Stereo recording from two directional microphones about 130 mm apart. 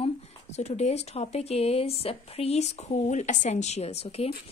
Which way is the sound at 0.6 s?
60° left (ahead or behind).